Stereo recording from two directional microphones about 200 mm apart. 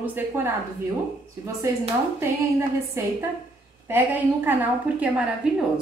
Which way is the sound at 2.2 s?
10° right (ahead or behind).